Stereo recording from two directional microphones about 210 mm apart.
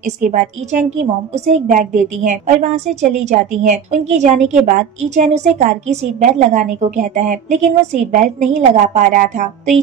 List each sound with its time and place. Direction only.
0.0 s a woman's voice: 35° right (ahead or behind)